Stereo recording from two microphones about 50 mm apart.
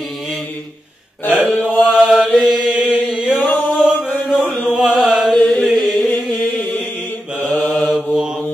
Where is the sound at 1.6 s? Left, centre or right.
Left.